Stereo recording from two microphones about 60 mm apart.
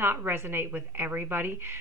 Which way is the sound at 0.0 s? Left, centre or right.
Right.